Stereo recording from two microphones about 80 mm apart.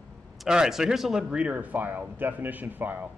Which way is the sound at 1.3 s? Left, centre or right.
Centre.